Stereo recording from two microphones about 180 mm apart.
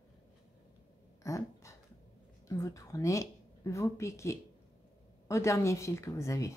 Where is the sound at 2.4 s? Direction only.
20° left (ahead or behind).